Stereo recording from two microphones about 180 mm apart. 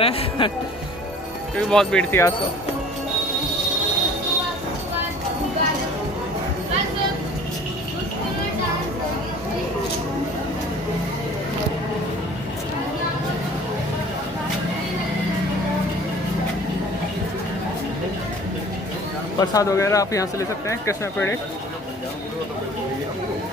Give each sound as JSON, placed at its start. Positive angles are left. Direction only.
{"t": 0.0, "sound": "speech", "side_deg": 30}
{"t": 1.7, "sound": "speech", "side_deg": 5}
{"t": 19.4, "sound": "speech", "side_deg": 20}